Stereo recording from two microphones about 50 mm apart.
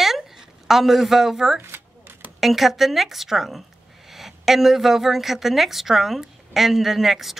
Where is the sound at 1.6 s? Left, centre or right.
Right.